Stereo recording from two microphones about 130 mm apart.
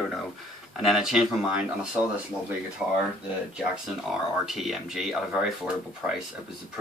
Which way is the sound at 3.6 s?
5° right (ahead or behind).